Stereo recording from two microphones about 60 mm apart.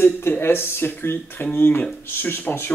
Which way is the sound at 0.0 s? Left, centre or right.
Left.